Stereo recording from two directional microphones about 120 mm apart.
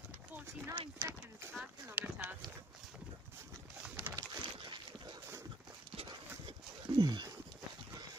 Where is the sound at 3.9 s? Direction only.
25° right (ahead or behind).